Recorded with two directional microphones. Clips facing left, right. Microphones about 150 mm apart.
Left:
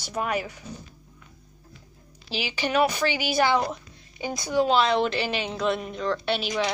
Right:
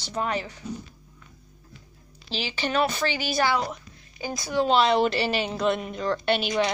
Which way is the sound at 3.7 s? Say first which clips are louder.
Left 2 dB; 20° left (ahead or behind).